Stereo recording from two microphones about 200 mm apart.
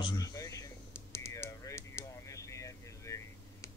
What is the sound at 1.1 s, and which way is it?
Typing, 15° left (ahead or behind).